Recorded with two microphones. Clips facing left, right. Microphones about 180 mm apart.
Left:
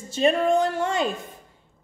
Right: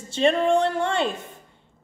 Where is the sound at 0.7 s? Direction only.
5° left (ahead or behind).